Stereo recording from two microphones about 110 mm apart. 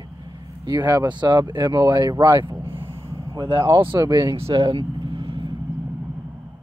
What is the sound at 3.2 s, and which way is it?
Speech, 40° right (ahead or behind).